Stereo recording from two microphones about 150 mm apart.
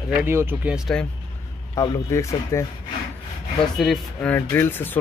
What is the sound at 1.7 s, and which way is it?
Speech, 20° left (ahead or behind).